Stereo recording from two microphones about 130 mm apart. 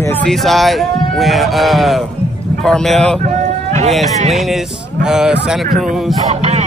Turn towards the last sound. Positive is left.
turn(degrees=-60)  # may be behind; listen again after turning